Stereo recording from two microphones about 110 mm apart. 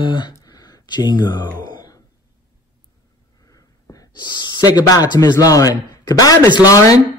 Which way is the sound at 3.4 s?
35° left (ahead or behind).